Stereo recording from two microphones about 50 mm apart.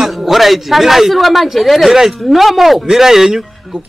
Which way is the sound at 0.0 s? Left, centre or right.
Centre.